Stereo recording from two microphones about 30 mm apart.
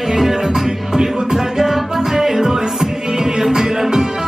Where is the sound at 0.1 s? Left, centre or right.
Centre.